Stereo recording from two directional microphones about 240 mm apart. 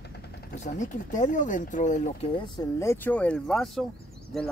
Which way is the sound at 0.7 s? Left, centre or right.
Left.